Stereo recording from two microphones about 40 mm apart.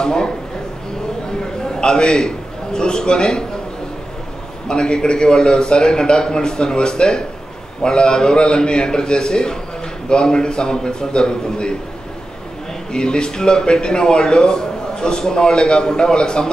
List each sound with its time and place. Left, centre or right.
0.0 s a man's voice: centre
1.6 s a man's voice: left
4.6 s speech: left
12.9 s speech: left